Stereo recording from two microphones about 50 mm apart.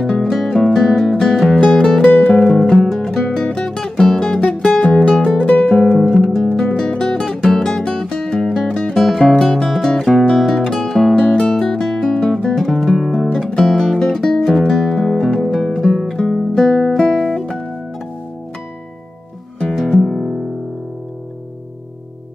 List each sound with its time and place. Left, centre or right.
0.2 s music: centre
1.8 s music: centre
3.3 s music: centre
4.6 s music: centre
6.3 s music: centre
8.6 s music: centre
8.9 s music: centre
10.3 s guitar: centre
10.7 s music: centre
11.1 s music: centre
19.7 s music: centre